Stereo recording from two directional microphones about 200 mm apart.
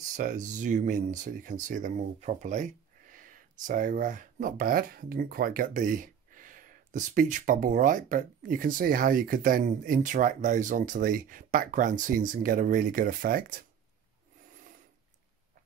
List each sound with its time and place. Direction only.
0.1 s speech: 40° right (ahead or behind)